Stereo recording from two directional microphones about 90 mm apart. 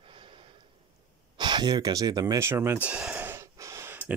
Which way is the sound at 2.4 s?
30° right (ahead or behind).